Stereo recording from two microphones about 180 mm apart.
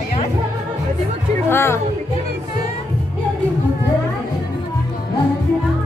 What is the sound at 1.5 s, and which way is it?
Speech, 15° left (ahead or behind).